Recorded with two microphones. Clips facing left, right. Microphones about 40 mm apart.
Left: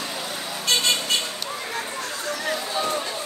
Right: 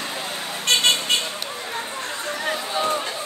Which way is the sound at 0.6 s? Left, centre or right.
Right.